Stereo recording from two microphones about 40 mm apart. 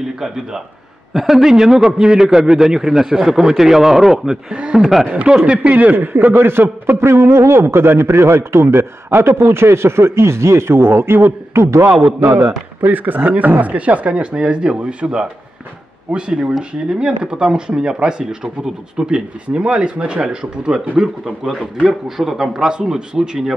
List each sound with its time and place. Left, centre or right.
0.0 s a man's voice: centre
4.5 s speech: right
5.5 s speech: right
5.9 s a man's voice: right
12.4 s speech: right; by 20.8 s centre
21.0 s a man's voice: centre